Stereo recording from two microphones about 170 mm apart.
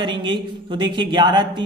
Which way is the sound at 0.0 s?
25° right (ahead or behind).